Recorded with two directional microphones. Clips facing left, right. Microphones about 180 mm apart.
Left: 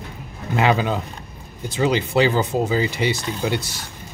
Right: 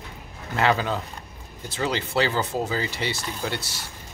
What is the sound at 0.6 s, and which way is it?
Speech, 15° left (ahead or behind).